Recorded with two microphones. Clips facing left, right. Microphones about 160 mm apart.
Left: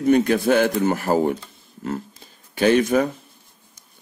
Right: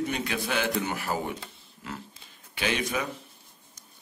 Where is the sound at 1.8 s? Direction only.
45° left (ahead or behind).